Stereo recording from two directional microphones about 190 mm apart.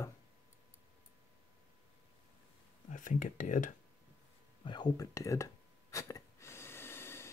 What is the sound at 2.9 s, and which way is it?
Speech, 45° left (ahead or behind).